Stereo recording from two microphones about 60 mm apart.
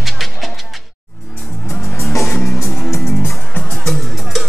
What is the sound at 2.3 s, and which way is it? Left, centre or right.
Music, left.